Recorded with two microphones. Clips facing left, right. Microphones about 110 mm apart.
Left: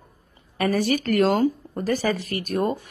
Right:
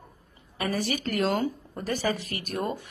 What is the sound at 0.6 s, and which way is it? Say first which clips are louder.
Speech: left 7 dB; 50° left (ahead or behind).